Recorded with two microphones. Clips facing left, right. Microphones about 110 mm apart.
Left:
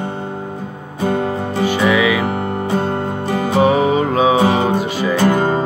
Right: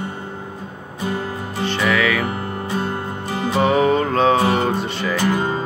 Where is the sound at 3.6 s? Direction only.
5° left (ahead or behind).